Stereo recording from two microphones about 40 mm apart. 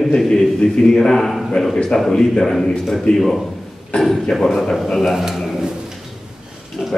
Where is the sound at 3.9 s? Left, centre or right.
Left.